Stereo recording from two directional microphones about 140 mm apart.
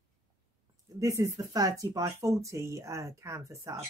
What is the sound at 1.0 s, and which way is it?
Speech, 25° right (ahead or behind).